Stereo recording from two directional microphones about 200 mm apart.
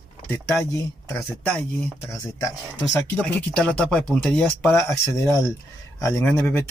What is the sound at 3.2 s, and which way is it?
Speech, 5° left (ahead or behind).